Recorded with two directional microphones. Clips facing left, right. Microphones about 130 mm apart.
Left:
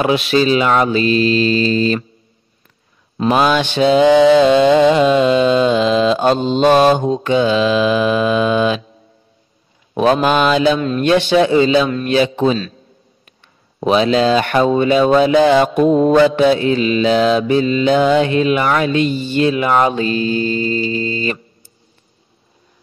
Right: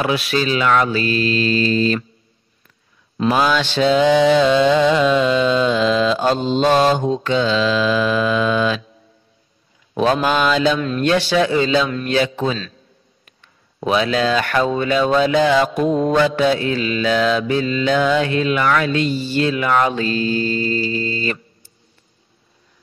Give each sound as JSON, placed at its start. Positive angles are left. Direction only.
{"t": 0.0, "sound": "speech", "side_deg": 25}
{"t": 3.3, "sound": "speech", "side_deg": 20}
{"t": 9.9, "sound": "speech", "side_deg": 15}
{"t": 13.7, "sound": "speech", "side_deg": 25}